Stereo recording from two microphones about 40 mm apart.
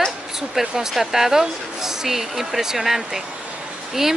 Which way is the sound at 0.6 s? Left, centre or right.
Centre.